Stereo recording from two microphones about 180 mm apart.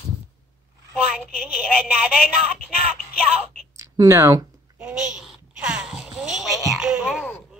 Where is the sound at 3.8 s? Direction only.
15° right (ahead or behind).